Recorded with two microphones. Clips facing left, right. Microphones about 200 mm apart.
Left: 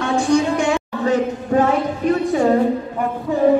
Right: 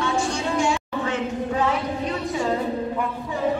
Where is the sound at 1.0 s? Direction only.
45° left (ahead or behind).